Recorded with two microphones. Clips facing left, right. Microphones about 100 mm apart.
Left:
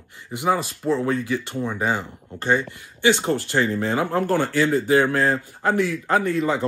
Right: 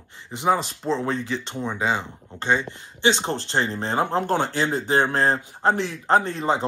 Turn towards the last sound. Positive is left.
turn(degrees=-25)  # may be behind; listen again after turning